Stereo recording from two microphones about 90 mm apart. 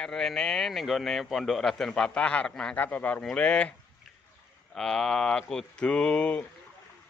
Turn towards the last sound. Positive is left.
turn(degrees=15)  # may be behind; listen again after turning